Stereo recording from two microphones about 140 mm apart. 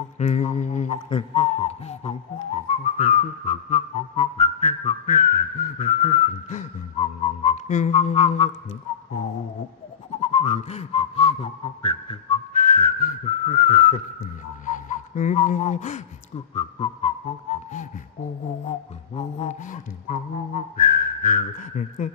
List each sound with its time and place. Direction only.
0.2 s speech: 65° left (ahead or behind)
10.2 s whistling: 50° left (ahead or behind)
12.5 s whistling: 65° left (ahead or behind)
16.5 s whistling: 45° left (ahead or behind)
18.7 s a sound: 55° left (ahead or behind)